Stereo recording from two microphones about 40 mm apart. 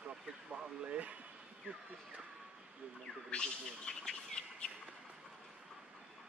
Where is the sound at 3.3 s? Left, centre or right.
Left.